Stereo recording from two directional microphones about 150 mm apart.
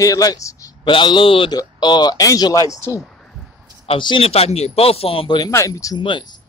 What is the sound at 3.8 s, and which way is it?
Speech, 35° left (ahead or behind).